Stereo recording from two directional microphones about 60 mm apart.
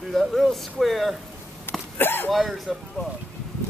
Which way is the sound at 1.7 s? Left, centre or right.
Left.